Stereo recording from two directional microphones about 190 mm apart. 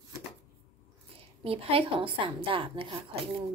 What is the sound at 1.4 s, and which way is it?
A woman's voice, 30° right (ahead or behind).